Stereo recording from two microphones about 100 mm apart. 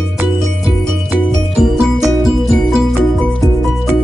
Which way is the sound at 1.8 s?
5° right (ahead or behind).